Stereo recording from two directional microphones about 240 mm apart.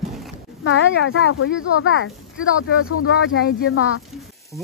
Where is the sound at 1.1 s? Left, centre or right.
Left.